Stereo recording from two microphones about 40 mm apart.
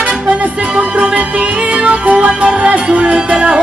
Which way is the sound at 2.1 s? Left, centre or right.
Right.